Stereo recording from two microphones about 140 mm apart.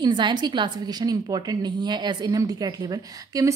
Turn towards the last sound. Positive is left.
turn(degrees=-25)  # may be behind; listen again after turning